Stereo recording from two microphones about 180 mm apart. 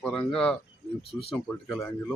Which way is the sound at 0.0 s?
5° left (ahead or behind).